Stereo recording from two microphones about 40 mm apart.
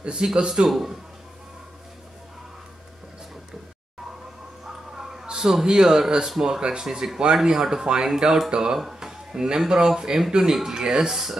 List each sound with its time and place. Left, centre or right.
0.0 s a man's voice: right
0.7 s a man's voice: centre
4.9 s a sound: centre
5.5 s a man's voice: centre